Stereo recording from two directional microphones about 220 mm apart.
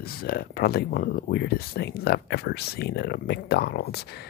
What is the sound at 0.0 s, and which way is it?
Speech, 45° left (ahead or behind).